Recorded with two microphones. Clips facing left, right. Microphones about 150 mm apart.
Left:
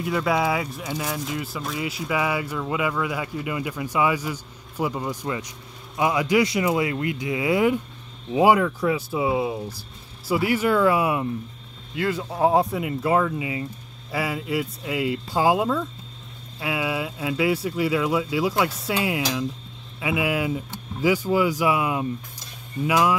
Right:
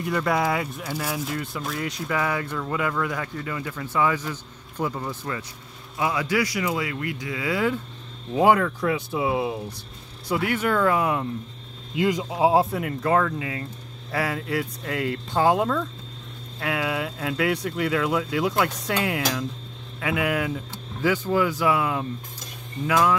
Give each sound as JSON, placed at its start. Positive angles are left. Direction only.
{"t": 0.0, "sound": "speech", "side_deg": 5}
{"t": 8.3, "sound": "speech", "side_deg": 5}
{"t": 11.9, "sound": "speech", "side_deg": -15}
{"t": 20.0, "sound": "speech", "side_deg": 5}